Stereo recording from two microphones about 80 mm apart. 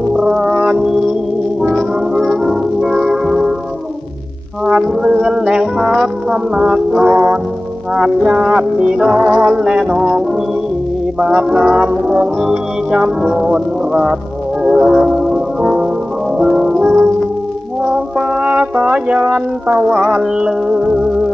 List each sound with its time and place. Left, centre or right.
0.1 s brass instrument: centre
1.8 s music: centre
4.6 s music: centre
11.1 s music: centre
18.4 s music: centre